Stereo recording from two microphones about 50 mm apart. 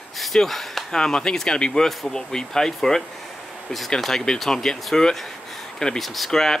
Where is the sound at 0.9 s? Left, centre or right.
Centre.